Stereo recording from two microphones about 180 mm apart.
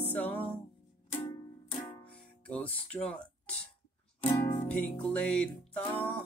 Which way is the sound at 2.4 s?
5° left (ahead or behind).